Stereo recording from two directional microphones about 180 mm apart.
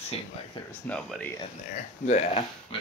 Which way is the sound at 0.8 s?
5° left (ahead or behind).